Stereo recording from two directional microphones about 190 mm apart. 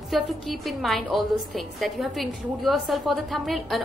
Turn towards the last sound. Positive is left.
turn(degrees=0)  # may be behind; listen again after turning